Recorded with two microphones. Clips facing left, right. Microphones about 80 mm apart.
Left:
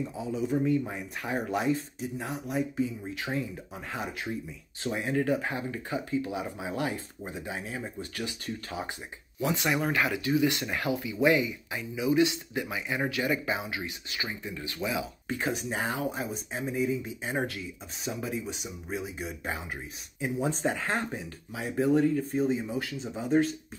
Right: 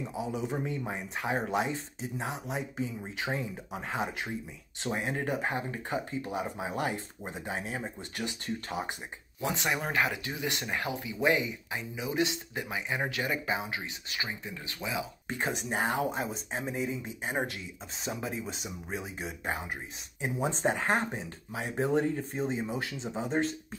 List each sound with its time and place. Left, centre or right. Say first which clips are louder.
0.1 s speech: left 1 dB; centre; by 7.8 s right
7.8 s speech: left 1 dB; right
14.9 s speech: left 1 dB; right
17.2 s speech: left 1 dB; centre
18.0 s speech: left 2 dB; right
20.2 s speech: left 2 dB; right